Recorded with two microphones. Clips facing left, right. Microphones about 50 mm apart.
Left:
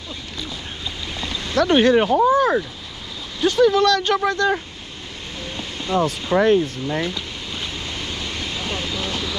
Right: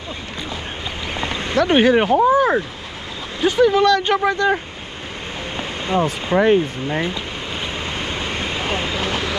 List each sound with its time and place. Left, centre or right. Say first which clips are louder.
1.2 s a sound: right 3 dB; right
1.7 s speech: right 1 dB; centre
5.9 s speech: right 1 dB; right
6.3 s waves: right 1 dB; right